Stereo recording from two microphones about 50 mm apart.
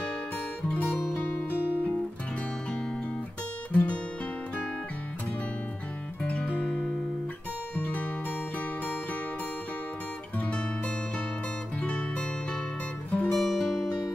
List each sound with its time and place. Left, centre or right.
0.7 s music: left
3.7 s music: left
6.2 s music: left
7.7 s music: left
11.8 s music: left
13.4 s music: centre